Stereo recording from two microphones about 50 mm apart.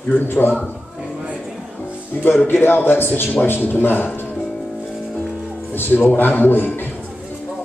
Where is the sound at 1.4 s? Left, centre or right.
Centre.